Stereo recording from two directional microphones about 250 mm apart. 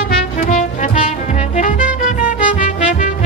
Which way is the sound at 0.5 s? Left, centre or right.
Left.